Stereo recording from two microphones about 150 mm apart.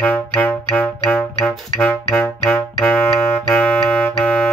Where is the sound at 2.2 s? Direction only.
20° left (ahead or behind).